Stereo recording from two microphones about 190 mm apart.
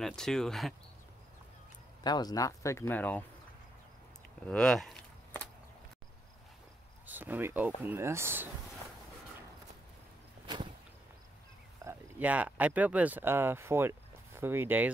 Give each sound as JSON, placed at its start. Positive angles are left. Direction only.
{"t": 0.0, "sound": "speech", "side_deg": 5}
{"t": 2.0, "sound": "speech", "side_deg": 20}
{"t": 4.5, "sound": "a sound", "side_deg": 5}
{"t": 7.1, "sound": "speech", "side_deg": -10}
{"t": 10.4, "sound": "whip", "side_deg": -25}
{"t": 11.8, "sound": "speech", "side_deg": -10}